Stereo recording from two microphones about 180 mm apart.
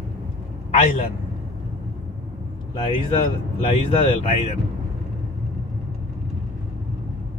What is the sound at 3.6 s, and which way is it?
Speech, 30° left (ahead or behind).